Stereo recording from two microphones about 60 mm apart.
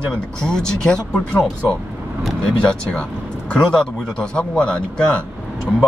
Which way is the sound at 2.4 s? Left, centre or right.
Centre.